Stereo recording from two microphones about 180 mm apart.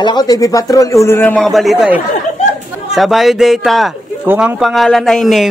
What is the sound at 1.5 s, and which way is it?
Speech, centre (ahead or behind).